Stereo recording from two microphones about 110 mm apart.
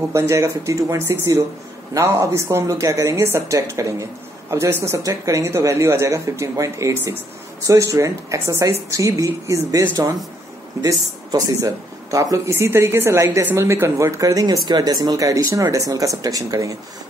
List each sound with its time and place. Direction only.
0.1 s speech: 25° right (ahead or behind)